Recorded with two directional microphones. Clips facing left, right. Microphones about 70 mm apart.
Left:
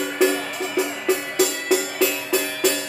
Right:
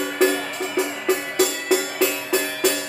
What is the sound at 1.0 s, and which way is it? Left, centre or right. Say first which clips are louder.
Music: even; right.